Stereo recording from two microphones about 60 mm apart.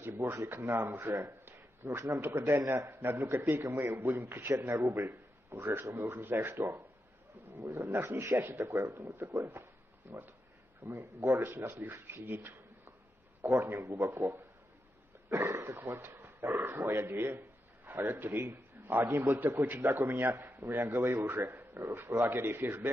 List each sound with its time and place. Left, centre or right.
0.0 s a man's voice: right
7.9 s a man's voice: right
13.7 s a man's voice: right